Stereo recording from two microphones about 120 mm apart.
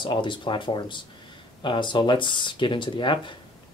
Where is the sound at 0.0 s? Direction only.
40° left (ahead or behind).